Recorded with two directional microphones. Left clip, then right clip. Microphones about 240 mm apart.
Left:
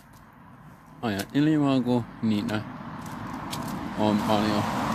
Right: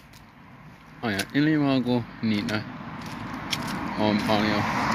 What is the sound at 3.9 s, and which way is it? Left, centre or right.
Speech, centre.